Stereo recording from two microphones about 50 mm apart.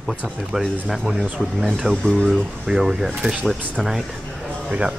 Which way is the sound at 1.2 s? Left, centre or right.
Centre.